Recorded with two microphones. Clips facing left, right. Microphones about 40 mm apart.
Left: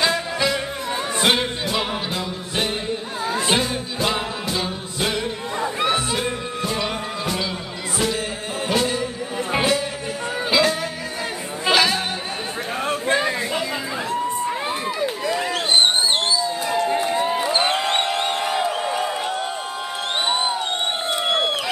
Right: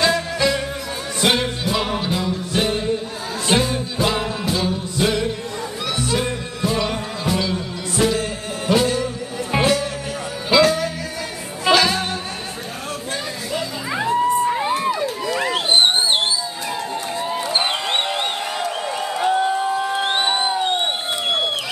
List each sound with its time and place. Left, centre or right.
0.0 s music: centre
5.6 s music: left
6.1 s music: centre
14.0 s crowd: centre
14.7 s run: centre
15.5 s a sound: centre
16.9 s run: centre
17.5 s a sound: centre
18.4 s crowd: centre
20.2 s music: centre